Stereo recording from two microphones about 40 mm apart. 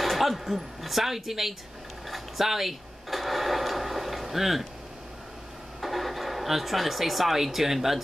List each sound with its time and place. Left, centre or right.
0.0 s speech: centre
2.0 s a sound: centre
5.8 s speech: centre